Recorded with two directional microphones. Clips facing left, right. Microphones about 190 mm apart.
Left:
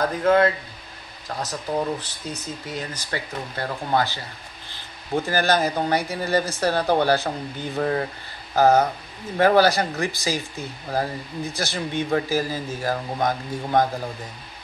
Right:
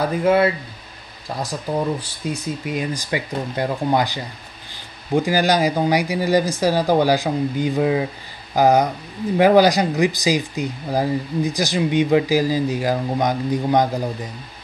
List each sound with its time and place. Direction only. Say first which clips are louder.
0.0 s speech: right 2 dB; 10° right (ahead or behind)